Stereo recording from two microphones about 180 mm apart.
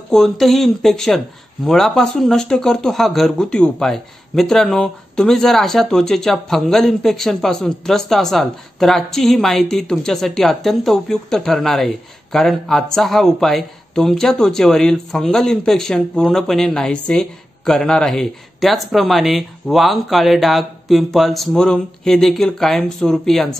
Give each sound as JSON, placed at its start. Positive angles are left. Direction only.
{"t": 0.1, "sound": "speech", "side_deg": 0}